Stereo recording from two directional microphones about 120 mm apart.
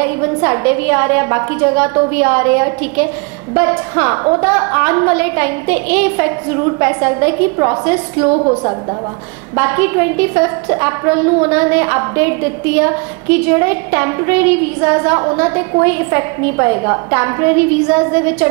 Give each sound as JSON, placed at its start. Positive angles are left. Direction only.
{"t": 0.0, "sound": "a woman's voice", "side_deg": -25}